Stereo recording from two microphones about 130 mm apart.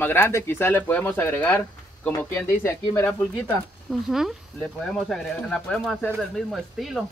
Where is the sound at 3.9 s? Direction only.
Centre (ahead or behind).